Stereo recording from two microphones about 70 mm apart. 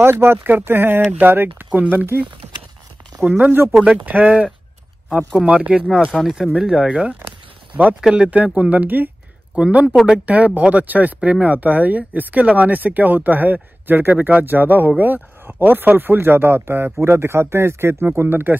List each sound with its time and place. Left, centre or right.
0.0 s speech: right
3.3 s speech: right
6.1 s speech: centre
6.6 s speech: centre; by 18.6 s right